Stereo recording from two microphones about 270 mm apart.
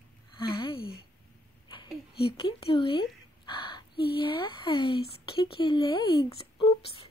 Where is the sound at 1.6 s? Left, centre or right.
Centre.